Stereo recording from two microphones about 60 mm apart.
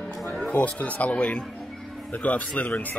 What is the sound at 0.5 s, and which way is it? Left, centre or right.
Speech, left.